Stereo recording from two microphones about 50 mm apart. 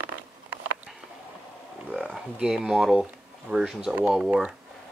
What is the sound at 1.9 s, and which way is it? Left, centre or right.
Speech, centre.